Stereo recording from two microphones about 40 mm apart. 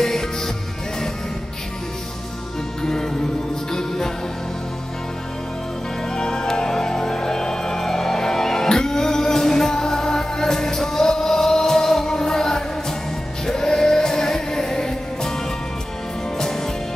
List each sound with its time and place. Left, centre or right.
0.0 s music: centre
2.8 s music: centre
6.0 s music: centre